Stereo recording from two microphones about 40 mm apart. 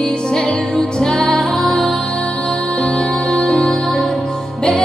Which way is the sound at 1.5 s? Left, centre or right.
Centre.